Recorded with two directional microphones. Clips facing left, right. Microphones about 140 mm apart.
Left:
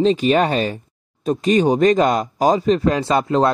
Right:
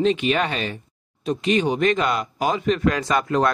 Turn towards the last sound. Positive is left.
turn(degrees=30)  # may be behind; listen again after turning